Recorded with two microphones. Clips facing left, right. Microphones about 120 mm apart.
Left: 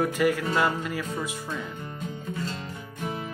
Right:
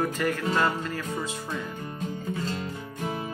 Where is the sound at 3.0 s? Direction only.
15° right (ahead or behind).